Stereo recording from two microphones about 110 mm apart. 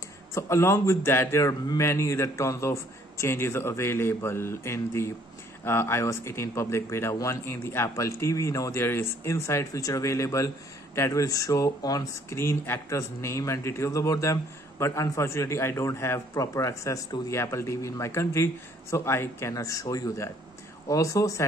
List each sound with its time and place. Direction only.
0.3 s speech: 25° left (ahead or behind)